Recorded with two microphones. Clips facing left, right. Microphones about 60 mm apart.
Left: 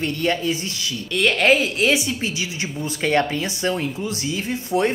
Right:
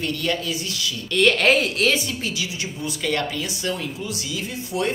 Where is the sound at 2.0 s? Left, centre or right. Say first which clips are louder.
Left 2 dB; left.